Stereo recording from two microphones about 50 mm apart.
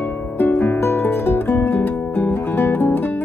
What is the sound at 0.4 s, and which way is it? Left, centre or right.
Music, left.